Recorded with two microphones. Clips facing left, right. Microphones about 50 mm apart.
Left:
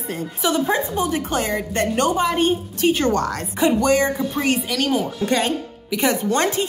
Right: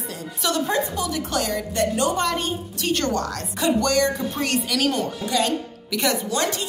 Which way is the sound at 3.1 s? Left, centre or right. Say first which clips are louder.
Left 4 dB; left.